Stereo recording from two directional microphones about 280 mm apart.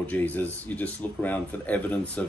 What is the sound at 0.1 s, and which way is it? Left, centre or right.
Speech, centre.